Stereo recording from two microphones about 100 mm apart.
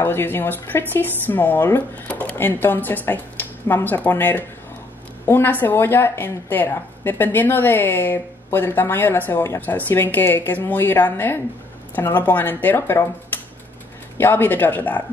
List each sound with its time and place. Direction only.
0.0 s a woman's voice: 20° left (ahead or behind)
14.1 s a woman's voice: 20° left (ahead or behind)